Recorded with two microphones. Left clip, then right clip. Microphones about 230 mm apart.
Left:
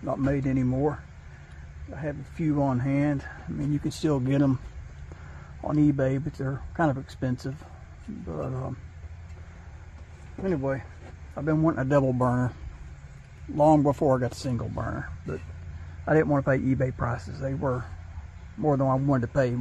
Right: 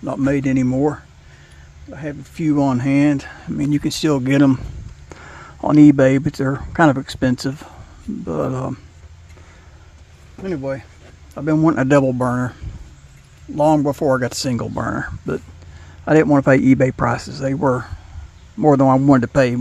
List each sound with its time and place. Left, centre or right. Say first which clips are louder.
0.0 s speech: right 8 dB; right
0.7 s speech: right 8 dB; right
3.8 s speech: right 9 dB; right
5.1 s a sound: right 13 dB; right
6.0 s speech: right 13 dB; right
6.3 s speech: right 12 dB; right
7.1 s speech: right 13 dB; right
8.3 s speech: right 12 dB; right
10.4 s speech: right 4 dB; right
11.9 s speech: right 8 dB; right
13.6 s speech: right 5 dB; right
14.0 s speech: right 7 dB; right
14.8 s speech: right 11 dB; right
18.6 s speech: right 11 dB; right